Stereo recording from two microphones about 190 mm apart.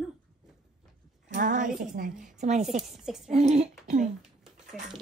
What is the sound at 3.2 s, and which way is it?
Speech, 35° right (ahead or behind).